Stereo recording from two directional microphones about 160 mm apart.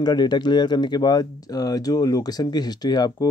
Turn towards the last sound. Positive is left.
turn(degrees=25)  # may be behind; listen again after turning